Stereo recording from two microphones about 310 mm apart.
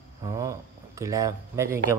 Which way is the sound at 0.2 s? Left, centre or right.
Centre.